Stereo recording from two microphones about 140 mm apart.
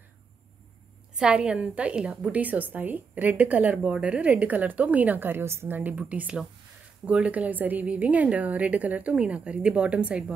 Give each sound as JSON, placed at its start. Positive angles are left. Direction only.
{"t": 1.1, "sound": "a woman's voice", "side_deg": -5}